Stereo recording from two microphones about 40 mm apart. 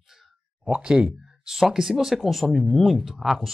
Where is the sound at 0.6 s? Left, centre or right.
Right.